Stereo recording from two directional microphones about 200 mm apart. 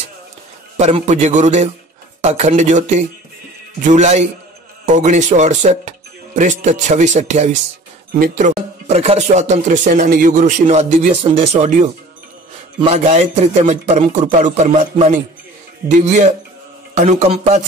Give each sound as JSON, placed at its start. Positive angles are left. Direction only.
{"t": 0.7, "sound": "speech", "side_deg": -35}